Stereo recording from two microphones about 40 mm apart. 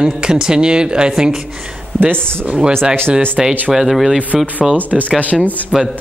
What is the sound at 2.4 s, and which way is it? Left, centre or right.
Speech, right.